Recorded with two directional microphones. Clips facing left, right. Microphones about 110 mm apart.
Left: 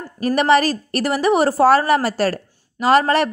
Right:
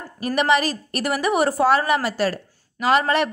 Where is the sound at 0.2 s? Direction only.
35° left (ahead or behind).